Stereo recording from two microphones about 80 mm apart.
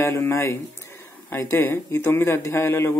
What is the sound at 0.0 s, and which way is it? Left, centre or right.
Speech, left.